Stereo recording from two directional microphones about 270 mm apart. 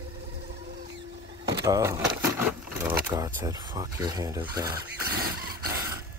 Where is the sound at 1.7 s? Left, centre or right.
Centre.